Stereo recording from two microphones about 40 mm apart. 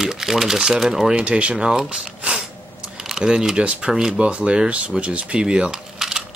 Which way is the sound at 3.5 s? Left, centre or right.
Right.